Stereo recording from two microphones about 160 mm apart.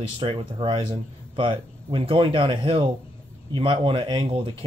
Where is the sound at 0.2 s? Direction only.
35° right (ahead or behind).